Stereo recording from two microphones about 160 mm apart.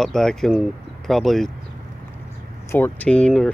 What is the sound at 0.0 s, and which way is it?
Speech, 5° left (ahead or behind).